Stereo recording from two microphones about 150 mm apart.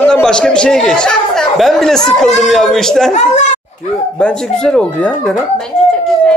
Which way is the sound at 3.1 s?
55° left (ahead or behind).